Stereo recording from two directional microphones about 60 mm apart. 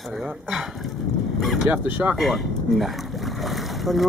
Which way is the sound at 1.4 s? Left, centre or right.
Centre.